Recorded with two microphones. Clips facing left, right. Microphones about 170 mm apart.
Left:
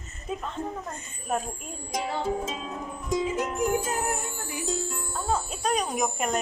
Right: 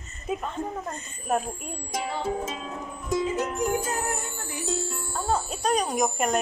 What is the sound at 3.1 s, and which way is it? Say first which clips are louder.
Music: right 1 dB; 15° left (ahead or behind).